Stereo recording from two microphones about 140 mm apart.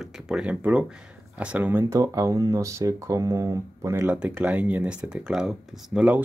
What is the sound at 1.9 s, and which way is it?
Speech, 25° right (ahead or behind).